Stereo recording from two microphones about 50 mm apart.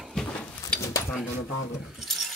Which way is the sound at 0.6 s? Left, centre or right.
Left.